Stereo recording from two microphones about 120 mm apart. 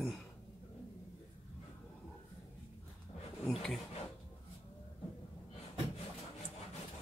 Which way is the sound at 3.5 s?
5° left (ahead or behind).